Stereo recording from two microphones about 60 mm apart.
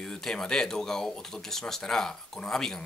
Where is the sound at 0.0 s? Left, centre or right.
Centre.